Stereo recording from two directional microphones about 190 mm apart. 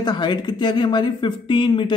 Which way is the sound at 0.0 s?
25° left (ahead or behind).